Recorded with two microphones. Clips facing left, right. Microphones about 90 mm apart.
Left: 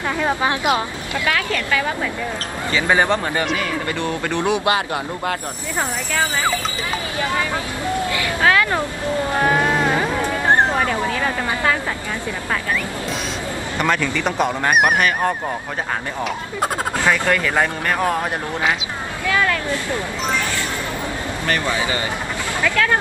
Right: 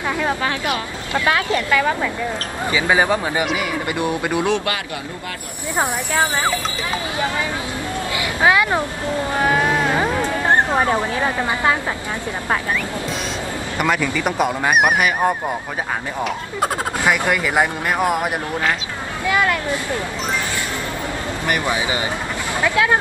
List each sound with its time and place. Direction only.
0.4 s speech: 20° left (ahead or behind)
1.1 s speech: 25° right (ahead or behind)
2.7 s speech: 10° right (ahead or behind)
8.2 s speech: 15° right (ahead or behind)
10.7 s speech: 20° right (ahead or behind)
13.7 s speech: 10° right (ahead or behind)
17.0 s speech: 15° right (ahead or behind)
21.5 s speech: 15° right (ahead or behind)